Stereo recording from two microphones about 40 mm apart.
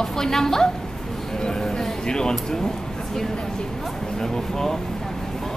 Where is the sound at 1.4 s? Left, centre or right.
Centre.